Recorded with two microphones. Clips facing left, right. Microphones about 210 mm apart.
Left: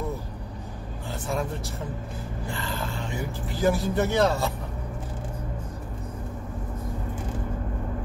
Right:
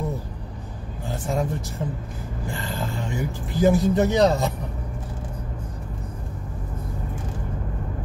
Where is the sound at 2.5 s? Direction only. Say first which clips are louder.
Right 3 dB; 20° right (ahead or behind).